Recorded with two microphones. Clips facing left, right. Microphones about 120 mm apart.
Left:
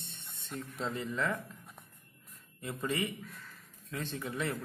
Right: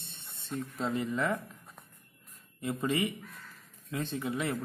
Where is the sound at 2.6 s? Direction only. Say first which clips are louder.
Right 4 dB; 20° right (ahead or behind).